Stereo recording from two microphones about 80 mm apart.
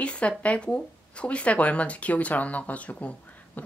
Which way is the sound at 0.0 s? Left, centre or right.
Centre.